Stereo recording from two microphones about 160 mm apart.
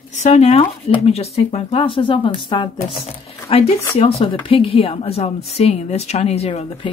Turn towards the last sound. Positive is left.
turn(degrees=40)  # may be behind; listen again after turning